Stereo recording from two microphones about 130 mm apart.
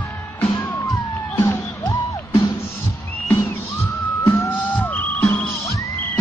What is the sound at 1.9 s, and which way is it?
Music, 30° left (ahead or behind).